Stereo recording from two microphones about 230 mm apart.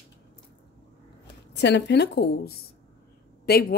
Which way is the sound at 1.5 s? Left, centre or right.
Left.